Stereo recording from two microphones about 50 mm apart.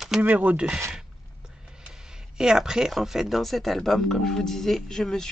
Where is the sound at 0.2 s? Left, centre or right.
Right.